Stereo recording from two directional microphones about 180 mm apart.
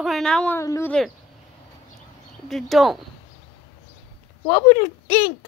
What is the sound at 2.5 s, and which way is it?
Speech, centre (ahead or behind).